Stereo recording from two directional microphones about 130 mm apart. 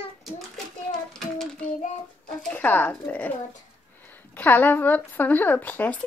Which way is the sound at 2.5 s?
10° left (ahead or behind).